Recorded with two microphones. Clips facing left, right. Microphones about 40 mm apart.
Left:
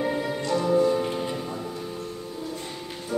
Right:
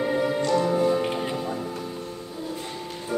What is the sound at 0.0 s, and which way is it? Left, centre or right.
Music, centre.